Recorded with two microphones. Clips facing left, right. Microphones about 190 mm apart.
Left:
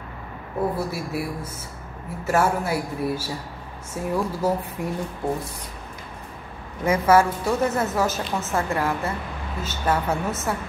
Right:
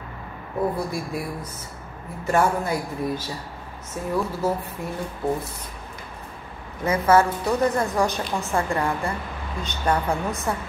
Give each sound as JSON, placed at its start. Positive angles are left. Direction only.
{"t": 0.7, "sound": "a man's voice", "side_deg": 5}
{"t": 6.8, "sound": "a woman's voice", "side_deg": 10}